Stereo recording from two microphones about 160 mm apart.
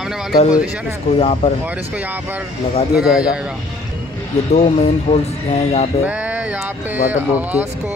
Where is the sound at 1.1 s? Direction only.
40° left (ahead or behind).